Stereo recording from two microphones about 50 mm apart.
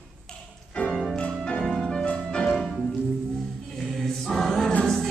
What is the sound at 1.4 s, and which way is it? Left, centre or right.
Music, centre.